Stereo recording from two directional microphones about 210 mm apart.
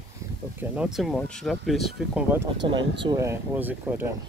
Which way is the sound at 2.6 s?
20° right (ahead or behind).